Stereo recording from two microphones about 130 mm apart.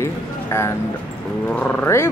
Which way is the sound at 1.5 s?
15° left (ahead or behind).